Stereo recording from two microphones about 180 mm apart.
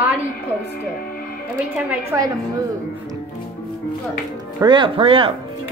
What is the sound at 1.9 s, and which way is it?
Speech, 15° right (ahead or behind).